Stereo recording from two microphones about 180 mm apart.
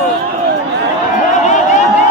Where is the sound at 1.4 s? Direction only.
40° left (ahead or behind).